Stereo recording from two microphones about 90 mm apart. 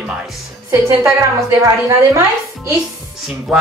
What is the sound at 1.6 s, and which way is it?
A woman's voice, 35° right (ahead or behind).